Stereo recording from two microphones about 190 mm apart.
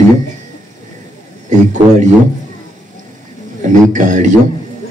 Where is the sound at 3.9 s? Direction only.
40° right (ahead or behind).